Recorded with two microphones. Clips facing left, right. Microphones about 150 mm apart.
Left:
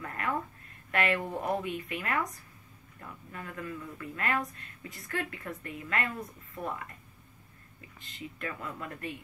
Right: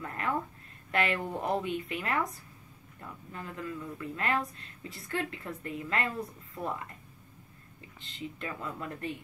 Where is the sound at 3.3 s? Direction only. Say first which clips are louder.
Right 1 dB; 25° right (ahead or behind).